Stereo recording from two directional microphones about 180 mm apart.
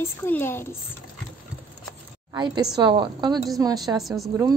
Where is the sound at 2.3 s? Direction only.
25° right (ahead or behind).